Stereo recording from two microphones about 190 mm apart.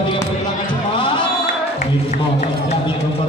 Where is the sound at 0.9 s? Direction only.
25° left (ahead or behind).